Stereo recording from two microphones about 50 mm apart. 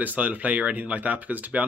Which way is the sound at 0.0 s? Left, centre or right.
Right.